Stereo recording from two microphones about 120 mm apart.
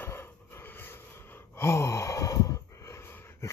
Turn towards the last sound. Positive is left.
turn(degrees=20)  # may be behind; listen again after turning